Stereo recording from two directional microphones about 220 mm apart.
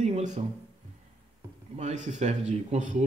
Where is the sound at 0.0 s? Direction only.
30° right (ahead or behind).